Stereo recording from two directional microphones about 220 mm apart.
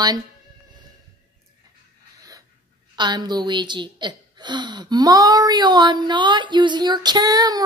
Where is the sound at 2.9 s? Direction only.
20° right (ahead or behind).